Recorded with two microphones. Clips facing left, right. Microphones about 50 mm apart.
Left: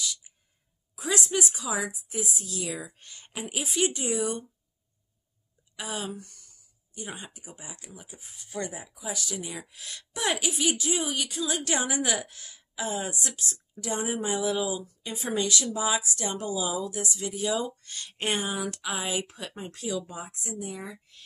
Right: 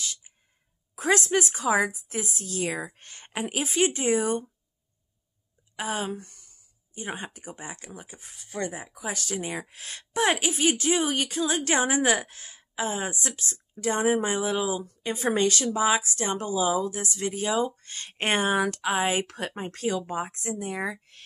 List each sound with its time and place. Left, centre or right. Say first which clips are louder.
0.0 s sneeze: left 1 dB; right
0.9 s speech: right 5 dB; right
5.8 s a woman's voice: right 5 dB; right
17.5 s a woman's voice: right 3 dB; right
19.2 s speech: right 5 dB; right